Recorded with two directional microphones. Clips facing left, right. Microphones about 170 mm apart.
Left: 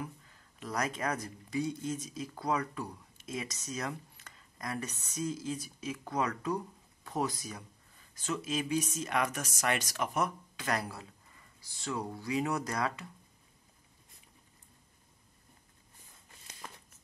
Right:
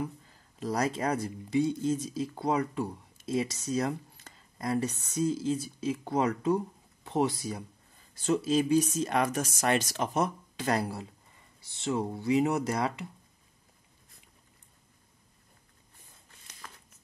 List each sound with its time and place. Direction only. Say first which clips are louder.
0.0 s speech: right 7 dB; 30° right (ahead or behind)